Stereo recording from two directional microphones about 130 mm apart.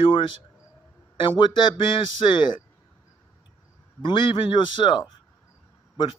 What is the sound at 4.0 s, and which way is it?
Speech, 40° left (ahead or behind).